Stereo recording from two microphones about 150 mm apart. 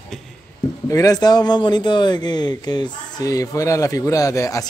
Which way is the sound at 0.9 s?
25° left (ahead or behind).